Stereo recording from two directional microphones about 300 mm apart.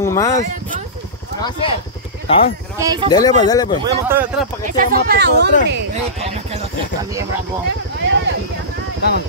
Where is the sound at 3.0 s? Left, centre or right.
Centre.